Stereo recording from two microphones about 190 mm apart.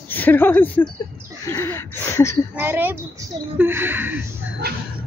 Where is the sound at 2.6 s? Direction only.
10° right (ahead or behind).